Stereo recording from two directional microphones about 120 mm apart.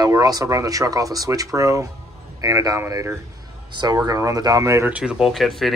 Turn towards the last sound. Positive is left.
turn(degrees=0)  # may be behind; listen again after turning